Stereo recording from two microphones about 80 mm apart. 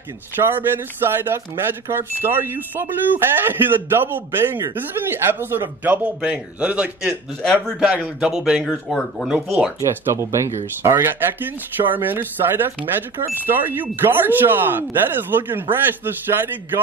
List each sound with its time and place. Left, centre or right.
0.4 s speech: right
8.6 s speech: centre
9.3 s speech: centre
10.1 s speech: right